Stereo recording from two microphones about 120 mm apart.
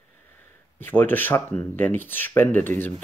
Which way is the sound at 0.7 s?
15° left (ahead or behind).